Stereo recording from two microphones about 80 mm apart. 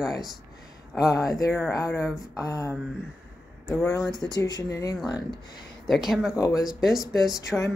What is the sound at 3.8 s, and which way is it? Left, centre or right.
Speech, left.